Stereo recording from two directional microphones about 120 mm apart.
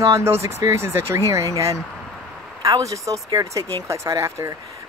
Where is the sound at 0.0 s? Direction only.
25° right (ahead or behind).